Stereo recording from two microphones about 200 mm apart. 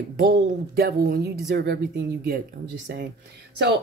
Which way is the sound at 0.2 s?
50° right (ahead or behind).